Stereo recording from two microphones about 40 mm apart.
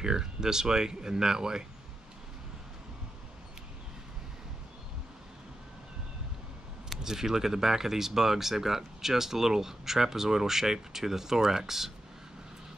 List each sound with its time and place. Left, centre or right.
0.0 s speech: centre
7.0 s speech: centre